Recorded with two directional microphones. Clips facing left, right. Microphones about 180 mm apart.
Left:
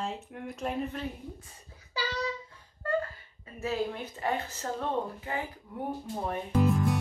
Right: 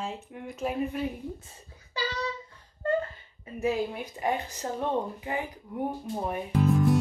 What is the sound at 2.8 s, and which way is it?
Speech, 20° right (ahead or behind).